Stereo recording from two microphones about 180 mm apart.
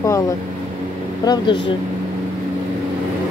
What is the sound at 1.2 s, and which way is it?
Speech, 25° left (ahead or behind).